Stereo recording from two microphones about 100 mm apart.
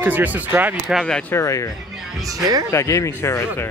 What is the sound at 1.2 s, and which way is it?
Speech, 30° left (ahead or behind).